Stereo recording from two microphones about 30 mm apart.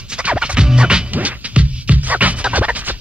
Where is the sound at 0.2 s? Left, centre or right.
Right.